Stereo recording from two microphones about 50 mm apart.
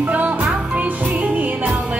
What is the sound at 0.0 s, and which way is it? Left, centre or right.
Music, right.